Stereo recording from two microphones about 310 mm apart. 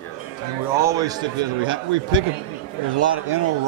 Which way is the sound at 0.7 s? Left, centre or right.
Centre.